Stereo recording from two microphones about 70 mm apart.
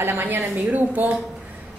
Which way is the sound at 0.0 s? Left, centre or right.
Right.